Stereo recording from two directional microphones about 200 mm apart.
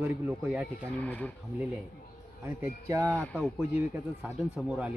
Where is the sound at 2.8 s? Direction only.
15° right (ahead or behind).